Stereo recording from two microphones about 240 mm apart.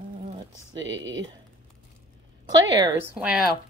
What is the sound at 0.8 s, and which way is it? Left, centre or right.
Speech, right.